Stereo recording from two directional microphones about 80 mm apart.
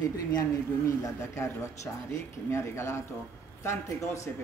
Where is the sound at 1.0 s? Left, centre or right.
Left.